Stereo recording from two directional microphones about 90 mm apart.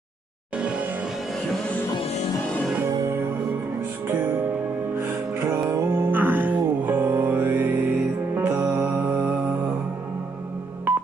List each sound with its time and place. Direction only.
0.6 s music: 10° right (ahead or behind)
3.1 s music: 25° right (ahead or behind)
4.9 s music: 30° right (ahead or behind)